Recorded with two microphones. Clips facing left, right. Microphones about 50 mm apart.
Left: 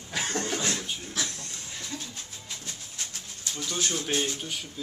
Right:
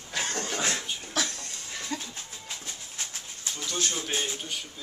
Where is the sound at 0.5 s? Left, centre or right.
Right.